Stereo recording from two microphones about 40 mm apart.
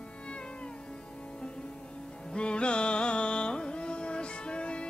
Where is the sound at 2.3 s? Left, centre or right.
Left.